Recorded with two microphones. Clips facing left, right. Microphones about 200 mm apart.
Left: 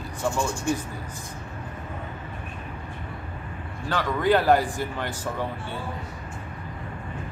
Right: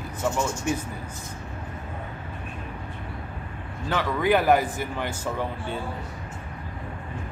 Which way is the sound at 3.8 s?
20° right (ahead or behind).